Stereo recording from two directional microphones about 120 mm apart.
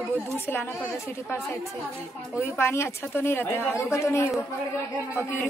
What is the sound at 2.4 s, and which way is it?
A woman's voice, 20° left (ahead or behind).